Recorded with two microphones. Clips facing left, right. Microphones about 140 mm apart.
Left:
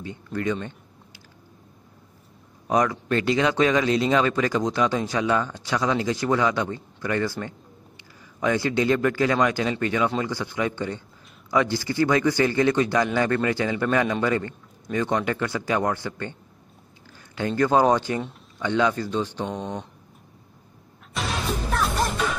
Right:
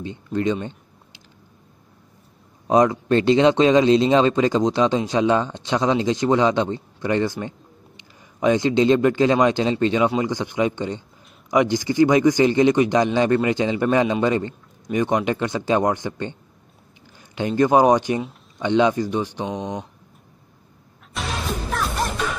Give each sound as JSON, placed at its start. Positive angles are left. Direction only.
{"t": 0.0, "sound": "a sound", "side_deg": -25}
{"t": 2.7, "sound": "speech", "side_deg": -25}
{"t": 17.4, "sound": "speech", "side_deg": -20}
{"t": 21.1, "sound": "music", "side_deg": 0}